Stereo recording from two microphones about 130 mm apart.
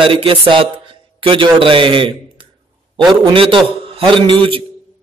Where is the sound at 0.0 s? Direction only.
45° right (ahead or behind).